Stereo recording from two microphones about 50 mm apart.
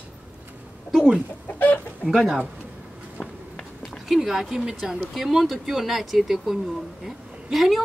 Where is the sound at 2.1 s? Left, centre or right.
Centre.